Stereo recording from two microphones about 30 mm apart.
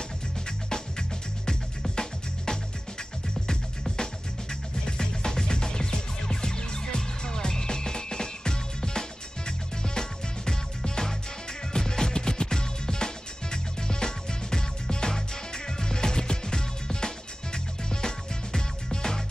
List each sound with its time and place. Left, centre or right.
0.7 s music: left
3.9 s music: left